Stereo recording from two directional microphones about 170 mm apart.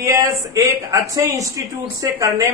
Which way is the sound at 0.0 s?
15° right (ahead or behind).